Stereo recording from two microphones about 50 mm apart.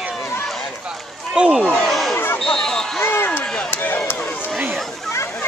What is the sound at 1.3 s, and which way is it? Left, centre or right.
Speech, centre.